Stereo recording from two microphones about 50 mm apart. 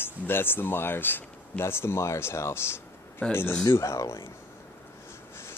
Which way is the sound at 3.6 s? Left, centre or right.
Left.